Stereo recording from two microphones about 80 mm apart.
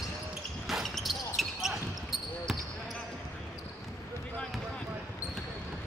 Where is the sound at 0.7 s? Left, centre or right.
Centre.